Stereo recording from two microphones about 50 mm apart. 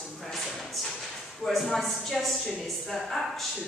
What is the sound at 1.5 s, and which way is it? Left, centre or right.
A woman's voice, centre.